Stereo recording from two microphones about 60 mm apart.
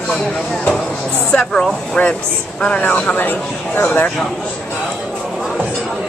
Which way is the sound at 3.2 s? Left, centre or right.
Left.